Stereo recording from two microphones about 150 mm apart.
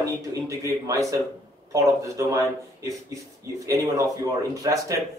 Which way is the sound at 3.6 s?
20° right (ahead or behind).